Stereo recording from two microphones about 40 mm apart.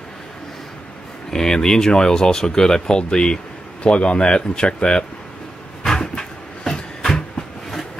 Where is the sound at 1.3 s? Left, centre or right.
Centre.